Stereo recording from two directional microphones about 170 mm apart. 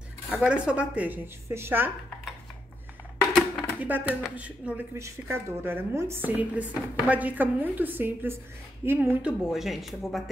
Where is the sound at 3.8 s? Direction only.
10° right (ahead or behind).